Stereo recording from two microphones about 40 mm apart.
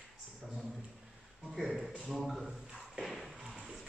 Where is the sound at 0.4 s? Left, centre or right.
Centre.